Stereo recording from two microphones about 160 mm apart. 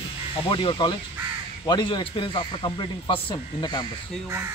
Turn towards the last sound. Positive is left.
turn(degrees=25)  # may be behind; listen again after turning